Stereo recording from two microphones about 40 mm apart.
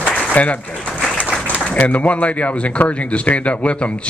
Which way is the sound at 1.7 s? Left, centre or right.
Left.